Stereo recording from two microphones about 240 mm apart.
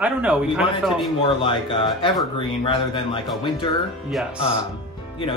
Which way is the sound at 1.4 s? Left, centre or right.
Left.